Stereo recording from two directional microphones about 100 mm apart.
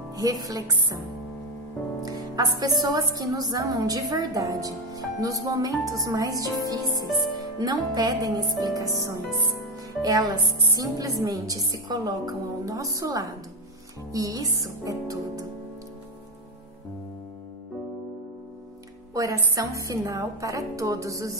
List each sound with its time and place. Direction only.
0.1 s a woman's voice: 40° right (ahead or behind)
2.0 s a woman's voice: 40° right (ahead or behind)
19.3 s a woman's voice: 30° right (ahead or behind)